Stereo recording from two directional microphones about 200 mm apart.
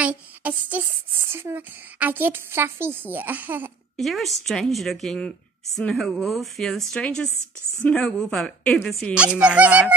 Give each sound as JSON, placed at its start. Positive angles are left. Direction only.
{"t": 0.0, "sound": "speech", "side_deg": -5}
{"t": 9.1, "sound": "speech", "side_deg": -5}